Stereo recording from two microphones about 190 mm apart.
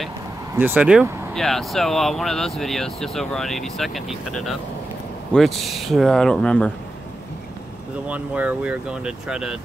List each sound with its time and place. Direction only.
0.6 s speech: 10° right (ahead or behind)
8.1 s speech: 5° right (ahead or behind)